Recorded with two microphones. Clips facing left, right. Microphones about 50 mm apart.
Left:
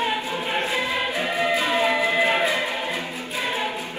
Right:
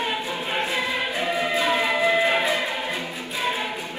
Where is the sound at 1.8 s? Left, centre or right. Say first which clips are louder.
Left 1 dB; left.